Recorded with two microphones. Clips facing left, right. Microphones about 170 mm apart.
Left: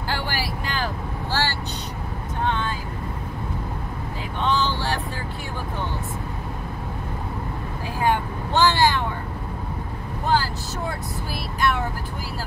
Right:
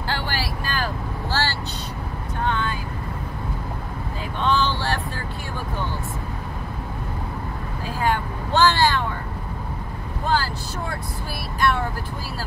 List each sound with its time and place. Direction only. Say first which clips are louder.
0.1 s vehicle: even; 15° left (ahead or behind)
4.4 s vehicle: right 1 dB; 20° left (ahead or behind)
8.0 s vehicle: left 1 dB; 15° left (ahead or behind)
10.2 s vehicle: left 1 dB; 20° left (ahead or behind)